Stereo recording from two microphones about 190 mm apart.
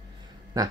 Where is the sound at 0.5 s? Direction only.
20° right (ahead or behind).